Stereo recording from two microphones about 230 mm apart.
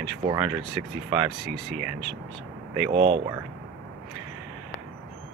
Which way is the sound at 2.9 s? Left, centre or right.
Right.